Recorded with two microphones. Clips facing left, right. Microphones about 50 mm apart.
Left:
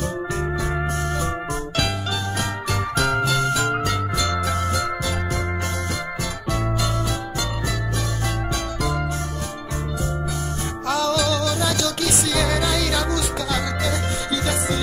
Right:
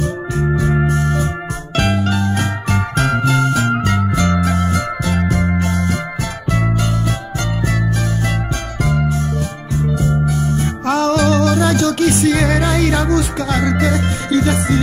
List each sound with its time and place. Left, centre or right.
0.8 s organ: centre
1.8 s music: right
10.9 s music: right